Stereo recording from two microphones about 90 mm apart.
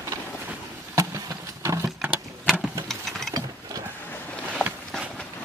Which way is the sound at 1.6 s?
35° right (ahead or behind).